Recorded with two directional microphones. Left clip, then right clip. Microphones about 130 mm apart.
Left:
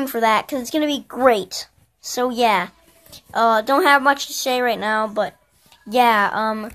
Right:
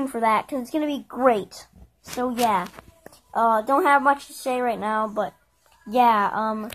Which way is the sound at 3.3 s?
25° left (ahead or behind).